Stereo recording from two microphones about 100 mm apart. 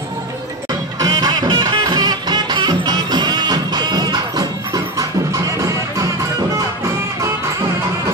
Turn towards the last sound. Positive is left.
turn(degrees=-30)  # may be behind; listen again after turning